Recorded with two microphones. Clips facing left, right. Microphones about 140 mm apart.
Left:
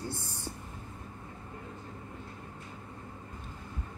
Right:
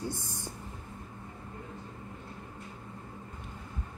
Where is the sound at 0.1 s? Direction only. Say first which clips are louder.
Right 1 dB; 15° right (ahead or behind).